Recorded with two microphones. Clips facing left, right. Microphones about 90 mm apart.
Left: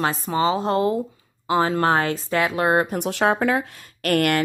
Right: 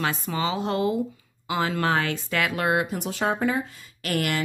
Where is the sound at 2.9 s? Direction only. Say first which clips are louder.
Left 5 dB; 70° left (ahead or behind).